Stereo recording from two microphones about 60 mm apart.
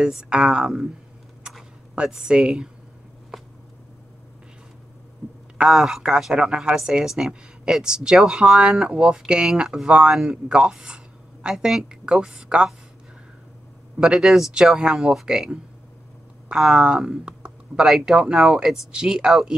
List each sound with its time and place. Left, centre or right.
0.0 s a woman's voice: centre
2.0 s a woman's voice: centre
5.6 s a woman's voice: centre
13.9 s speech: centre
14.2 s a woman's voice: centre